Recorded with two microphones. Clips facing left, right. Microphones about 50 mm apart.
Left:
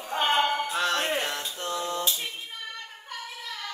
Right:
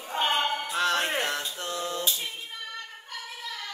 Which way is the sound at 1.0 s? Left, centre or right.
Right.